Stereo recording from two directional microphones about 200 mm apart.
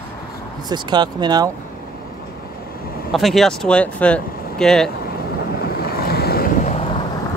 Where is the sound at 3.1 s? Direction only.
Centre (ahead or behind).